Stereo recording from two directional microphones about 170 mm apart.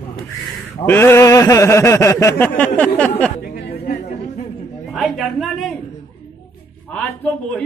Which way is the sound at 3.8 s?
65° left (ahead or behind).